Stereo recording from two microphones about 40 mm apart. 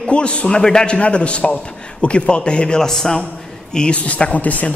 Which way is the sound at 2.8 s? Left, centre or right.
Centre.